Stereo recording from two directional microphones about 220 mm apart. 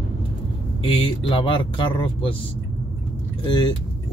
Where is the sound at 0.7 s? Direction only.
25° left (ahead or behind).